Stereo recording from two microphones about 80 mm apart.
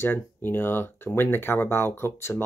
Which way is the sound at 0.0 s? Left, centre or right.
Left.